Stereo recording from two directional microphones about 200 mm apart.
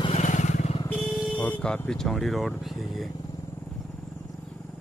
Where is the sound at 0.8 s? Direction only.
5° left (ahead or behind).